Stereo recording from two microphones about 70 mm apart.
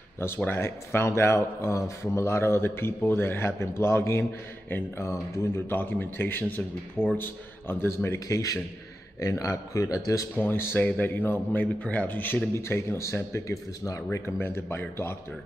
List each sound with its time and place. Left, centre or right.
0.5 s speech: left
4.6 s a man's voice: left
5.0 s speech: left
5.7 s a man's voice: left
10.3 s a man's voice: left
12.5 s speech: left
14.2 s speech: left